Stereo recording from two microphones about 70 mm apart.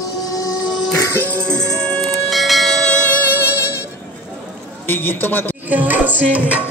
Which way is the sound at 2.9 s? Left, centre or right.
Left.